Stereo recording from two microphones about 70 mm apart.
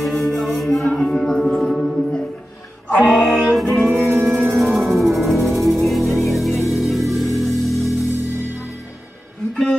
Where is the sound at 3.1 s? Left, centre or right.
Centre.